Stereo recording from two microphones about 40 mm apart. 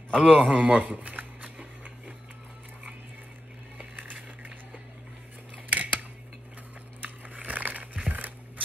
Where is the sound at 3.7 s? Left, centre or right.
Right.